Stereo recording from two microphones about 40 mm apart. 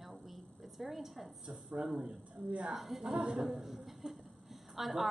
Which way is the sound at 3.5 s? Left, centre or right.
Centre.